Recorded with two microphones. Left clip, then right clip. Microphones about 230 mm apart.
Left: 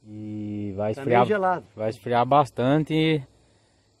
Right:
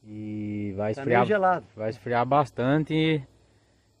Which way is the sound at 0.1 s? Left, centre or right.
Centre.